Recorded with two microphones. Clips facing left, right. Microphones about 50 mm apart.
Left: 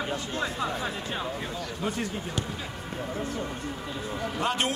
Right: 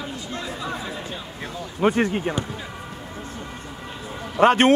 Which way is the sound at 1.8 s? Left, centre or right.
Right.